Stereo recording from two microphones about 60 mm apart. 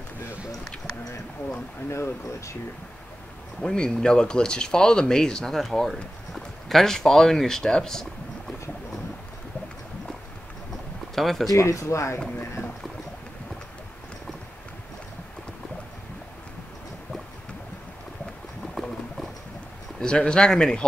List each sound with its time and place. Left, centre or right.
1.9 s speech: left
3.6 s speech: centre
11.1 s speech: centre
11.5 s speech: left
18.8 s clip-clop: centre
20.0 s speech: centre